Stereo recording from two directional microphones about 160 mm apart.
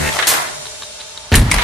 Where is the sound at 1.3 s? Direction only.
Centre (ahead or behind).